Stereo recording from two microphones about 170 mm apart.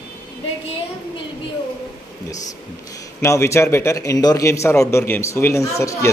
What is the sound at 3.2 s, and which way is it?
A man's voice, 15° left (ahead or behind).